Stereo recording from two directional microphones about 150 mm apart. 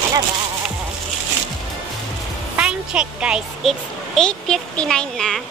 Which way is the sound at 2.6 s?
5° right (ahead or behind).